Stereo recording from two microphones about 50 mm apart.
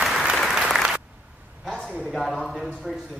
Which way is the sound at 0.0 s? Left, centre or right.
Centre.